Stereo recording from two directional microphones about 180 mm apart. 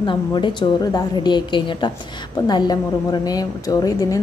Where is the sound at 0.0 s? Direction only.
25° left (ahead or behind).